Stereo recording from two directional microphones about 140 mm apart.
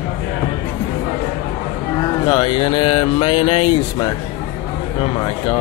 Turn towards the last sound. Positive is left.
turn(degrees=40)  # may be behind; listen again after turning